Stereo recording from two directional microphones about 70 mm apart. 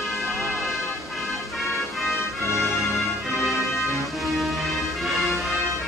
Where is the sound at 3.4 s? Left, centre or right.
Centre.